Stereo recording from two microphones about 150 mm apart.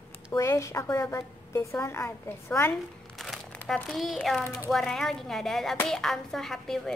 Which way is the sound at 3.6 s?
5° left (ahead or behind).